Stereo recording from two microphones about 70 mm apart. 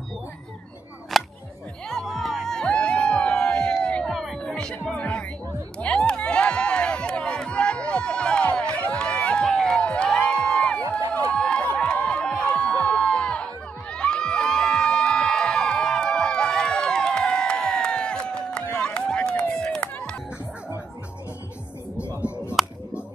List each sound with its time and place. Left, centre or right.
1.1 s a sound: centre
1.9 s music: centre
4.1 s music: centre
4.4 s music: centre
5.8 s crowd: centre
10.8 s run: right
11.3 s a sound: centre
13.9 s crowd: centre
19.4 s run: left
19.7 s music: centre
22.2 s a sound: centre